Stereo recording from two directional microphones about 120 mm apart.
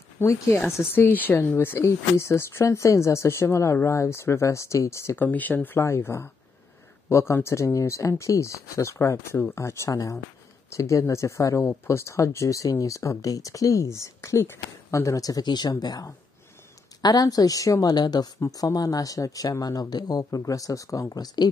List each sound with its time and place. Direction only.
0.2 s speech: 20° left (ahead or behind)